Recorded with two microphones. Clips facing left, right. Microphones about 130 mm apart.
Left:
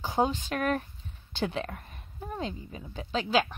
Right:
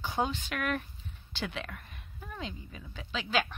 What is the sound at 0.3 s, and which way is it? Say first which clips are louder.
A woman's voice: left 4 dB; 40° left (ahead or behind).